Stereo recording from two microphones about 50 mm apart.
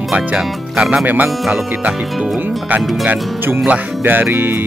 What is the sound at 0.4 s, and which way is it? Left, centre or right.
Speech, centre.